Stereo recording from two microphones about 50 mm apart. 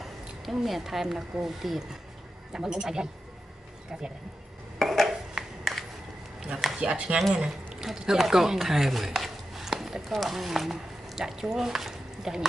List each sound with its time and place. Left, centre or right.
0.0 s speech: centre
4.7 s dishes: centre
5.6 s a sound: centre
6.8 s speech: right